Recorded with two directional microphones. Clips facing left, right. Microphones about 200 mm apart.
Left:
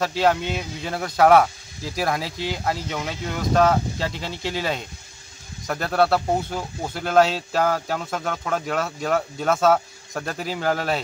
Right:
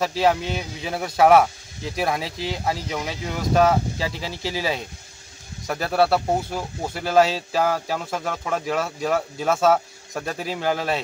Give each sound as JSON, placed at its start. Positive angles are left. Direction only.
{"t": 0.0, "sound": "speech", "side_deg": -5}